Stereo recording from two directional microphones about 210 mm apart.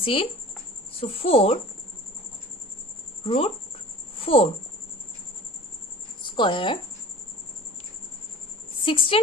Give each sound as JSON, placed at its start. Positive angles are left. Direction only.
{"t": 0.0, "sound": "speech", "side_deg": 25}
{"t": 3.3, "sound": "speech", "side_deg": 25}
{"t": 6.2, "sound": "speech", "side_deg": 20}
{"t": 8.8, "sound": "speech", "side_deg": 25}